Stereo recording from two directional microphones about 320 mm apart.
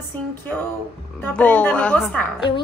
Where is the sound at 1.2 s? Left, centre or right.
Centre.